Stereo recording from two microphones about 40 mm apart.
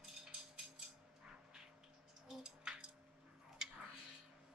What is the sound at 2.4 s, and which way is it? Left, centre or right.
Music, right.